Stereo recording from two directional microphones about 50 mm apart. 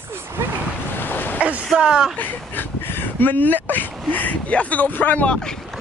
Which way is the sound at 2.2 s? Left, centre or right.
Left.